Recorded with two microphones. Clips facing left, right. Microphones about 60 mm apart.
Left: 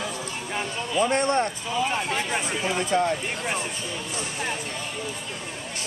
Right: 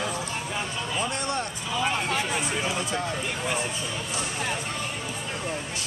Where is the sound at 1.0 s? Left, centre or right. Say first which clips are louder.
Left 9 dB; left.